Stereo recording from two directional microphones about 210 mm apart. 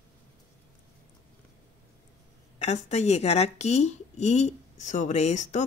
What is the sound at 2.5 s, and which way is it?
Speech, 30° left (ahead or behind).